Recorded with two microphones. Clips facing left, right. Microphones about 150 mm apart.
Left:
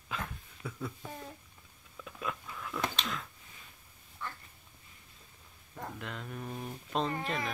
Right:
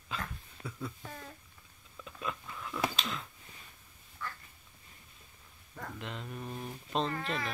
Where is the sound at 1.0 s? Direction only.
20° left (ahead or behind).